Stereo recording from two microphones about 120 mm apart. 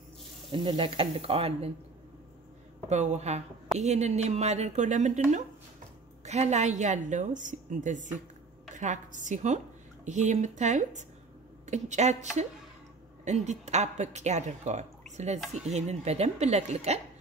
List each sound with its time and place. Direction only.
0.6 s speech: 40° right (ahead or behind)
2.9 s speech: 75° right (ahead or behind)
6.2 s a woman's voice: 70° right (ahead or behind); by 11.1 s 90° right
11.6 s a woman's voice: 75° right (ahead or behind)